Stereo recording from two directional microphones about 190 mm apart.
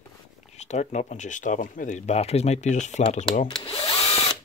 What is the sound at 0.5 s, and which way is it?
Speech, 35° left (ahead or behind).